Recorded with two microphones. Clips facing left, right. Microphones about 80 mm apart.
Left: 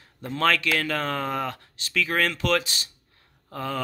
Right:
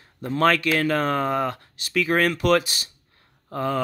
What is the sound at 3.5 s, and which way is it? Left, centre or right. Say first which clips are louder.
Speech: right 5 dB; centre.